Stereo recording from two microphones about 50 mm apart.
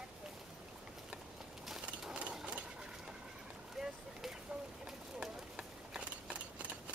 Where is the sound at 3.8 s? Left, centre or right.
Centre.